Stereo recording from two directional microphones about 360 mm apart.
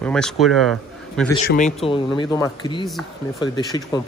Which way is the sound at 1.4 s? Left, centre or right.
Left.